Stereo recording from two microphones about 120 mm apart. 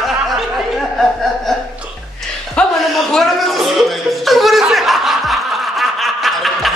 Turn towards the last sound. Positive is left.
turn(degrees=0)  # may be behind; listen again after turning